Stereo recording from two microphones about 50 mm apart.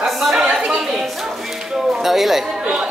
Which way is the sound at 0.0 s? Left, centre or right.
Centre.